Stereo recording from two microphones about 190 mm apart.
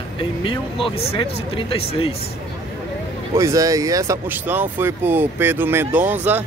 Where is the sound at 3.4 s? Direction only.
15° right (ahead or behind).